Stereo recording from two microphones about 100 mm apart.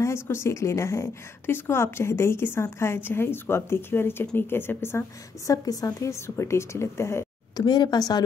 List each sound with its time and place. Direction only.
0.0 s a woman's voice: 25° left (ahead or behind)
5.5 s a woman's voice: 35° left (ahead or behind)
7.5 s speech: 45° left (ahead or behind)